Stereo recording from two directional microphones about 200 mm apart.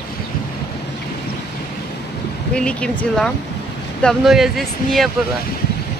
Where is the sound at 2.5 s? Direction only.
5° left (ahead or behind).